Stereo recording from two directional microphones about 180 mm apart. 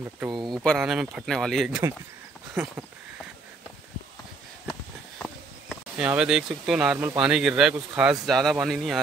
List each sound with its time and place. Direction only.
0.3 s speech: 25° right (ahead or behind)
0.6 s speech: centre (ahead or behind)
5.2 s speech: centre (ahead or behind)